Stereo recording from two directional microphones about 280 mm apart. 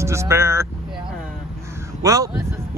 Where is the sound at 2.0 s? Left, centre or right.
Centre.